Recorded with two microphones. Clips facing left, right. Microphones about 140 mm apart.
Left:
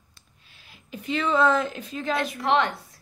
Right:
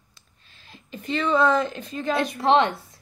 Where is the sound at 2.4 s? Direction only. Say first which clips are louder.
Right 5 dB; 30° right (ahead or behind).